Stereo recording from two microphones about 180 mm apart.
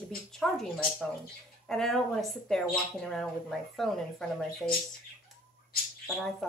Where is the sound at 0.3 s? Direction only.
Centre (ahead or behind).